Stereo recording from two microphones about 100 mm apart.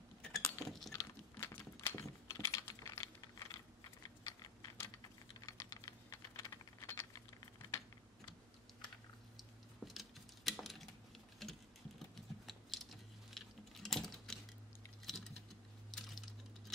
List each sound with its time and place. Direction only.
0.3 s chink: centre (ahead or behind)
1.3 s a sound: 20° left (ahead or behind)
1.8 s computer keyboard: 25° left (ahead or behind)
5.4 s typing: 40° left (ahead or behind)
9.4 s a sound: centre (ahead or behind)
11.4 s typing: centre (ahead or behind)
15.9 s patter: 5° left (ahead or behind)